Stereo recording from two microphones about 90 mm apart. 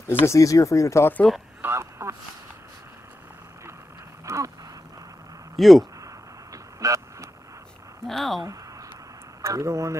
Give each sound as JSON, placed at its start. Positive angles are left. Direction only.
{"t": 0.0, "sound": "speech", "side_deg": 30}
{"t": 1.6, "sound": "a sound", "side_deg": -30}
{"t": 4.3, "sound": "a sound", "side_deg": -35}
{"t": 5.6, "sound": "speech", "side_deg": 0}
{"t": 6.5, "sound": "vehicle", "side_deg": -35}
{"t": 8.0, "sound": "speech", "side_deg": 0}
{"t": 9.4, "sound": "speech", "side_deg": -35}